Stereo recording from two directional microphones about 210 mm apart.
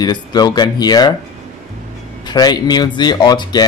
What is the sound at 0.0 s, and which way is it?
Speech, 20° left (ahead or behind).